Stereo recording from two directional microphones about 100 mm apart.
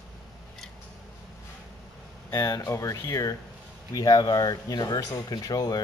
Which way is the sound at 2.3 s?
30° left (ahead or behind).